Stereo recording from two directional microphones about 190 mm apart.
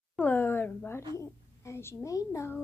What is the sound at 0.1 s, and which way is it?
A woman's voice, 10° left (ahead or behind).